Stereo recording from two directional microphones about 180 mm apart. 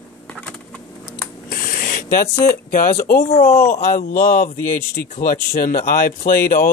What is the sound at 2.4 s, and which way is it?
Speech, 50° left (ahead or behind).